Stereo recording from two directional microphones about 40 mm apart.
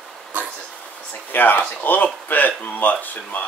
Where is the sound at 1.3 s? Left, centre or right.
Left.